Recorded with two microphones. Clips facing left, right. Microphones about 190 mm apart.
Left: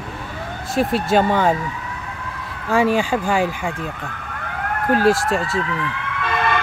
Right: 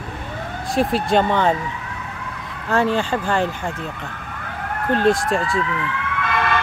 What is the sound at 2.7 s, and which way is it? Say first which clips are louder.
Speech: left 2 dB; 10° left (ahead or behind).